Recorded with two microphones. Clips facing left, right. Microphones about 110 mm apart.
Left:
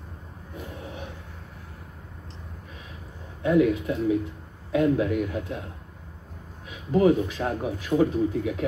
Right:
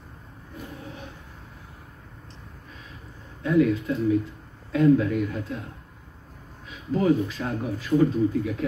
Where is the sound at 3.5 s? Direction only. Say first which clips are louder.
Even; 15° left (ahead or behind).